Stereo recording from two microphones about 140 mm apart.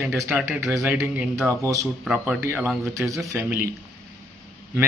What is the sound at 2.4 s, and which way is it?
Speech, 15° right (ahead or behind).